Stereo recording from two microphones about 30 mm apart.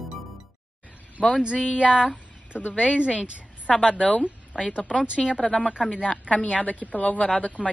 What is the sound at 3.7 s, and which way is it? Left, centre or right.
Speech, left.